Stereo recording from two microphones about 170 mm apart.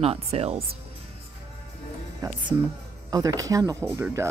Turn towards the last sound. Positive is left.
turn(degrees=-15)  # may be behind; listen again after turning